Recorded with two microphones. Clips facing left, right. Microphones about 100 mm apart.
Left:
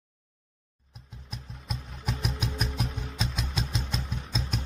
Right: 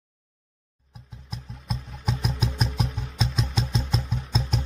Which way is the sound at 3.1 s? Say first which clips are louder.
Right 7 dB; 30° right (ahead or behind).